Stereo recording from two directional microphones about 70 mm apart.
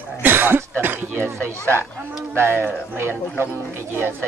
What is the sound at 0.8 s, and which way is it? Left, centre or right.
Speech, right.